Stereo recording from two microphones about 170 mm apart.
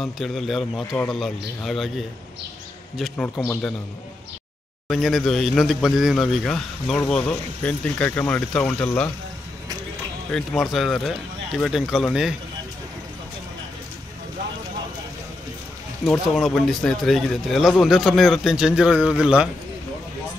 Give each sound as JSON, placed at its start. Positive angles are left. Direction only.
{"t": 0.0, "sound": "speech", "side_deg": 0}
{"t": 4.8, "sound": "speech", "side_deg": 0}
{"t": 10.3, "sound": "speech", "side_deg": 0}
{"t": 16.3, "sound": "speech", "side_deg": 0}